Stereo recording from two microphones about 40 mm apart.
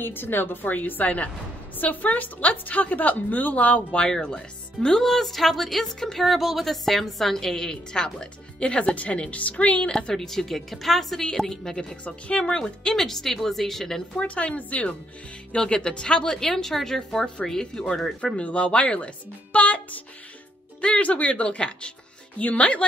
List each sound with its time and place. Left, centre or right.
0.0 s a woman's voice: left
3.9 s speech: left
5.0 s a woman's voice: centre
7.9 s speech: left
9.9 s speech: centre
12.0 s speech: left; by 14.0 s centre
14.1 s speech: left
15.5 s speech: left
18.2 s speech: left
22.4 s speech: left